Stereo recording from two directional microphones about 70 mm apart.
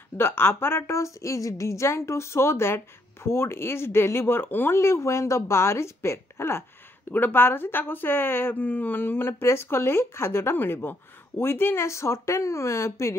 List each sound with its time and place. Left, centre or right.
0.2 s a woman's voice: left